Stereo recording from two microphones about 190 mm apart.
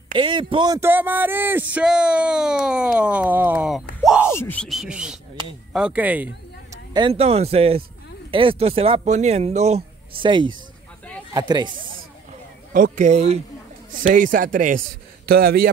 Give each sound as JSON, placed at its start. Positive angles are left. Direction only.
{"t": 0.1, "sound": "a man's voice", "side_deg": -25}
{"t": 0.7, "sound": "speech", "side_deg": -10}
{"t": 4.0, "sound": "a sound", "side_deg": -5}
{"t": 4.3, "sound": "music", "side_deg": 10}
{"t": 5.7, "sound": "speech", "side_deg": -5}
{"t": 6.9, "sound": "a man's voice", "side_deg": -25}
{"t": 12.7, "sound": "a man's voice", "side_deg": -45}